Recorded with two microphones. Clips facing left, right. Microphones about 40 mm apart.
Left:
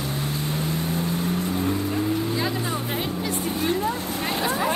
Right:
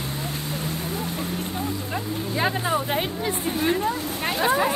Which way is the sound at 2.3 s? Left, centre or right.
Right.